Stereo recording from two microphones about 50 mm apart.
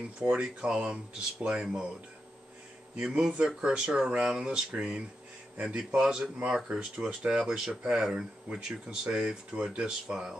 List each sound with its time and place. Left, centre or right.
0.2 s speech: right
3.0 s speech: centre